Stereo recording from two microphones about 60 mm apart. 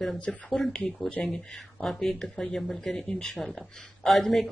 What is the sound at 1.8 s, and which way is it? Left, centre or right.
Speech, centre.